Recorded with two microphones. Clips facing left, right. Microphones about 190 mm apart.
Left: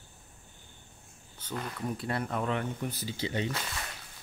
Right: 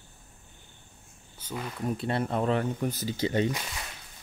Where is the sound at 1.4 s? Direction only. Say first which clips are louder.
Right 1 dB; 10° right (ahead or behind).